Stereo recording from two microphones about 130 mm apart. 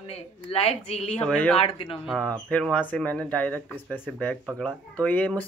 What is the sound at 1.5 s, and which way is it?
Speech, 50° left (ahead or behind).